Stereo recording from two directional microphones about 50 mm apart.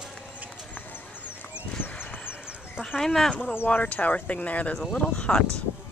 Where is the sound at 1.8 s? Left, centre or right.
Left.